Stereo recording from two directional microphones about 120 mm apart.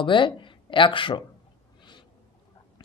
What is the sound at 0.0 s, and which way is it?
Speech, 40° left (ahead or behind).